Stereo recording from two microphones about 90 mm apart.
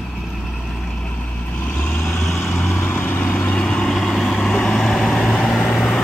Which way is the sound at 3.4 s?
10° left (ahead or behind).